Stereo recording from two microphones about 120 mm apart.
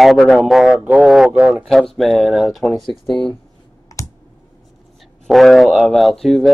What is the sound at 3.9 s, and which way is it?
Clicking, 25° left (ahead or behind).